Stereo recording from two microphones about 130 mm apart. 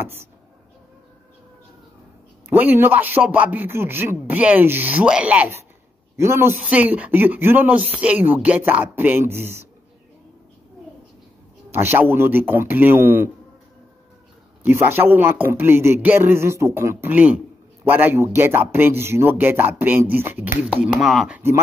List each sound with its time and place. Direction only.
0.0 s speech: 15° right (ahead or behind)
2.5 s a man's voice: 15° right (ahead or behind)
11.7 s a man's voice: 15° right (ahead or behind)
14.6 s a man's voice: 15° right (ahead or behind); by 21.4 s centre (ahead or behind)